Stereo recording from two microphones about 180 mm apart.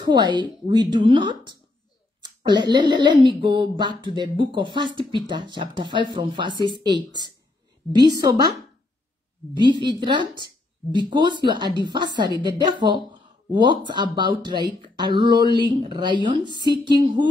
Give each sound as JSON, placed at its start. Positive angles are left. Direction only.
{"t": 0.0, "sound": "speech", "side_deg": -25}
{"t": 9.6, "sound": "speech", "side_deg": -25}